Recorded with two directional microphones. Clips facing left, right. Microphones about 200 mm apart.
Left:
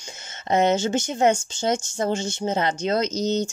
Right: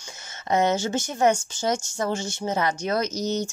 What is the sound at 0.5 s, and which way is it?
A woman's voice, 20° left (ahead or behind).